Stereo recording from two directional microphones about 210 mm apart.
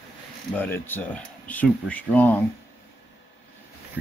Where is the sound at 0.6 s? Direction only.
10° left (ahead or behind).